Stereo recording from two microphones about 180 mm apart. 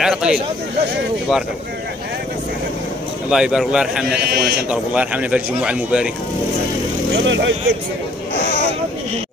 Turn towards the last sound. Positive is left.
turn(degrees=-90)